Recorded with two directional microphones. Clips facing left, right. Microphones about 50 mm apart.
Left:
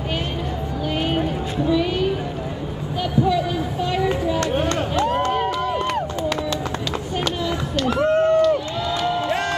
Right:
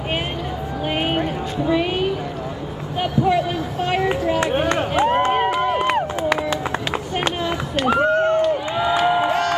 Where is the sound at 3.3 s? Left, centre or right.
Right.